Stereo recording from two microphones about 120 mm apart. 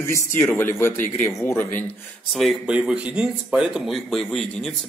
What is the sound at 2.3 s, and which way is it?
Speech, centre (ahead or behind).